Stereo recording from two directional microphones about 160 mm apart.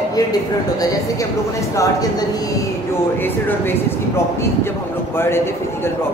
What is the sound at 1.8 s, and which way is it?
Speech, 25° left (ahead or behind).